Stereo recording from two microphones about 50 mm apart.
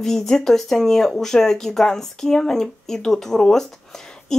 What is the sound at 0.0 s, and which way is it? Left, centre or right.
Speech, centre.